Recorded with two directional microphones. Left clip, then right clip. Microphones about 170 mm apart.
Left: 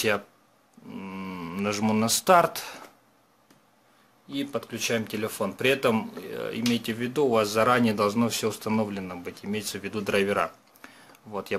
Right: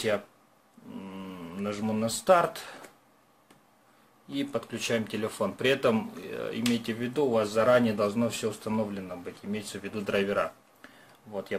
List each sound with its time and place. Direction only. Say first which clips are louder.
0.9 s speech: left 5 dB; 30° left (ahead or behind)
4.3 s speech: left 1 dB; 5° left (ahead or behind); by 10.9 s 30° left (ahead or behind)